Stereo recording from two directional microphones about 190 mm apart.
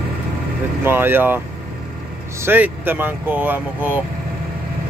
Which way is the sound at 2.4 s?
10° right (ahead or behind).